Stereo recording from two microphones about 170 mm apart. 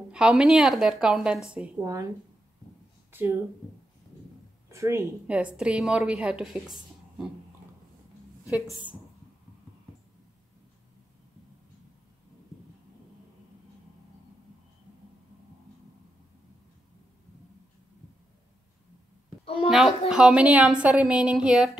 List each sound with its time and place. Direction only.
0.1 s a woman's voice: 5° right (ahead or behind)
1.8 s a woman's voice: 20° right (ahead or behind)
3.1 s a sound: 10° right (ahead or behind)
4.6 s a woman's voice: 15° right (ahead or behind)
8.5 s a woman's voice: 5° right (ahead or behind)
20.1 s a woman's voice: 5° right (ahead or behind)